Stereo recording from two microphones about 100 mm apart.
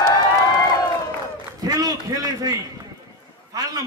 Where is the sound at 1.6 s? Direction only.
40° right (ahead or behind).